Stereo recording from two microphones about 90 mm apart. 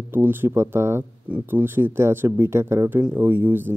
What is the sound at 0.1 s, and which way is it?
Speech, 25° right (ahead or behind).